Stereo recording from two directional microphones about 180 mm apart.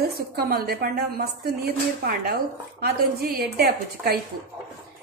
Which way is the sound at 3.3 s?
60° right (ahead or behind).